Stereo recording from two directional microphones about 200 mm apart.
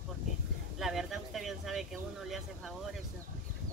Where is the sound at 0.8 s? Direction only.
Centre (ahead or behind).